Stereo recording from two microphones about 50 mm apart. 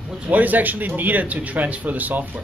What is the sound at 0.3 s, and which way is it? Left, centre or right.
Speech, right.